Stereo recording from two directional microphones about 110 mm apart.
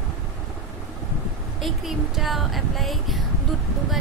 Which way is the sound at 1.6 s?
Centre (ahead or behind).